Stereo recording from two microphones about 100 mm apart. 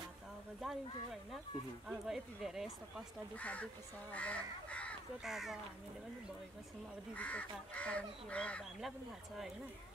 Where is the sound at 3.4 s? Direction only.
15° left (ahead or behind).